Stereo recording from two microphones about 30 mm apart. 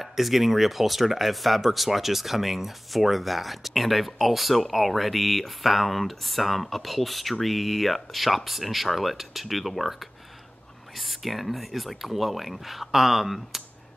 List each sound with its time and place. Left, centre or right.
0.0 s speech: centre